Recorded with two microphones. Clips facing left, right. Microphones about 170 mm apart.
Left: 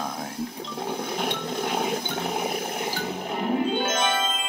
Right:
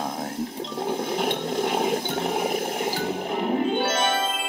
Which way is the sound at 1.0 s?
25° right (ahead or behind).